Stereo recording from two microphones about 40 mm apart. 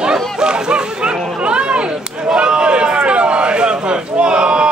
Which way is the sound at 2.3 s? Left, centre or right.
Right.